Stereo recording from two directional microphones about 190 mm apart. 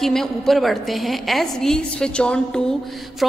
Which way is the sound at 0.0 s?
Centre (ahead or behind).